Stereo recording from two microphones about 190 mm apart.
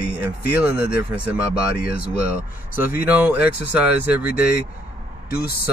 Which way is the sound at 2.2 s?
10° right (ahead or behind).